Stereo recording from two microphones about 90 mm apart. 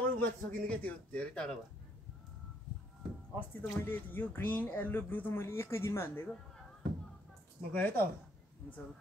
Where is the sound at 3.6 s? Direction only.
20° left (ahead or behind).